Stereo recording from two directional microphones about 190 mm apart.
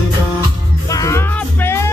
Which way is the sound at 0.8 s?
15° left (ahead or behind).